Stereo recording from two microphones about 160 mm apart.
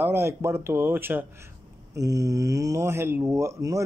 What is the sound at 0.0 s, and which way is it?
Speech, 15° right (ahead or behind).